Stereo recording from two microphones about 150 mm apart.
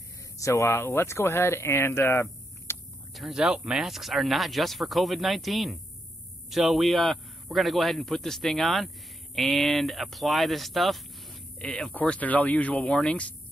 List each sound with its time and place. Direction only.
0.4 s speech: 20° left (ahead or behind)
2.7 s a sound: 15° left (ahead or behind)
3.2 s a man's voice: 5° right (ahead or behind)